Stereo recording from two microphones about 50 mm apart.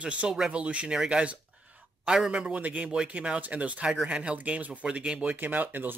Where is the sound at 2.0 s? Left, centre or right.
Centre.